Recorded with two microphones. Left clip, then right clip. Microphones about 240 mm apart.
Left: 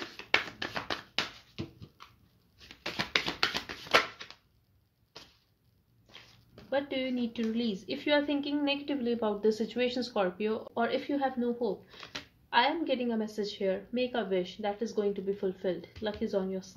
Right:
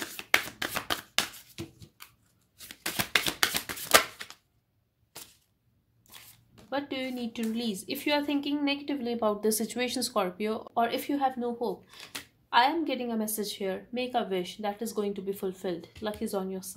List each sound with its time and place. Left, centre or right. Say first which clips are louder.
0.2 s music: right 3 dB; right
2.7 s a sound: right 3 dB; right
6.7 s speech: left 1 dB; right